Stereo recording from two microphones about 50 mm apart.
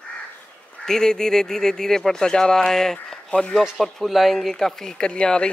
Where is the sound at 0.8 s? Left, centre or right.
Centre.